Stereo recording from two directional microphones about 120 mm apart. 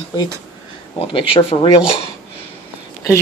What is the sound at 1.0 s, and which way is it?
Speech, 50° left (ahead or behind).